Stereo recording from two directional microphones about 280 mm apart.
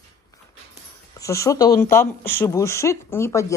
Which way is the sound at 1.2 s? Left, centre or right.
Centre.